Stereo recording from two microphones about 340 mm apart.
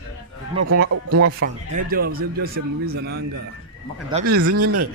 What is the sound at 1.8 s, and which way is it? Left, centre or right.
Speech, right.